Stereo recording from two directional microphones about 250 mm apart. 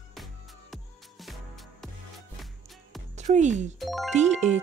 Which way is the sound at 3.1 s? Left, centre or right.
Right.